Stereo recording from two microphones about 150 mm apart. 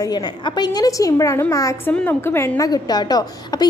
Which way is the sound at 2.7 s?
25° left (ahead or behind).